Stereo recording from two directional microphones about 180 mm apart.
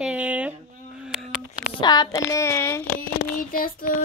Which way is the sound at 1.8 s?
25° left (ahead or behind).